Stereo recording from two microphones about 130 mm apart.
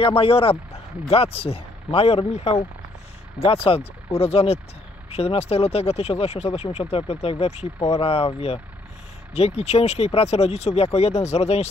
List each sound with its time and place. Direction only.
0.0 s speech: 45° left (ahead or behind)
3.3 s speech: 45° left (ahead or behind)
9.3 s speech: 50° left (ahead or behind)